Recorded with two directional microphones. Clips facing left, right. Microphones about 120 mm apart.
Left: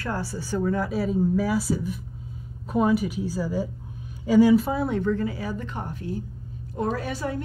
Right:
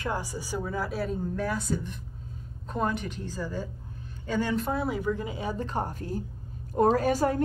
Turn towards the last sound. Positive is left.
turn(degrees=-45)  # may be behind; listen again after turning